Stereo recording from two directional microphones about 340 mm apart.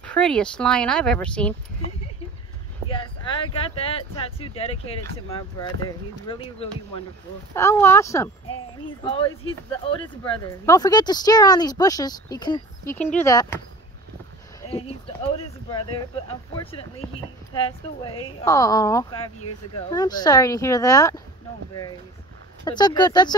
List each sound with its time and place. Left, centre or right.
0.0 s speech: centre
2.9 s a sound: centre
3.7 s speech: centre
6.2 s speech: centre
15.3 s speech: centre
22.7 s speech: centre